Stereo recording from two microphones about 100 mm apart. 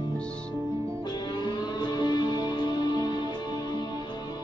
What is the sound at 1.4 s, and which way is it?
Music, 45° left (ahead or behind).